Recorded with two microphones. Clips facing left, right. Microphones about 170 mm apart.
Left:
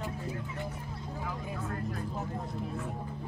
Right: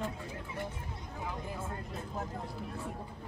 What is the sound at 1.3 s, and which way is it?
Speech, 20° right (ahead or behind).